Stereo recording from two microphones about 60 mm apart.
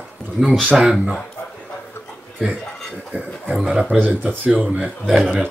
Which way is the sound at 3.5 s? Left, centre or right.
Centre.